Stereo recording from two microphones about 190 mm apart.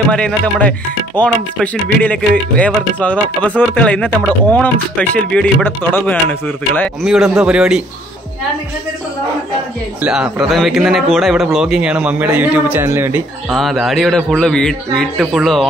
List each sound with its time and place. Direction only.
0.1 s speech: 5° left (ahead or behind)
10.0 s speech: 5° right (ahead or behind)
13.6 s speech: centre (ahead or behind)